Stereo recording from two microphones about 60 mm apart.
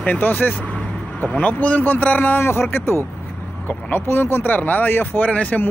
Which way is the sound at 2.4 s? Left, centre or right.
Left.